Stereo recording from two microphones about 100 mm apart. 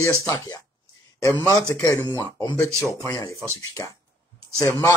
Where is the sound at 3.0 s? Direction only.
35° left (ahead or behind).